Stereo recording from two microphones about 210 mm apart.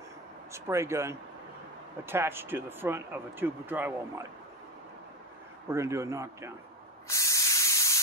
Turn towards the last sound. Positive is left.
turn(degrees=15)  # may be behind; listen again after turning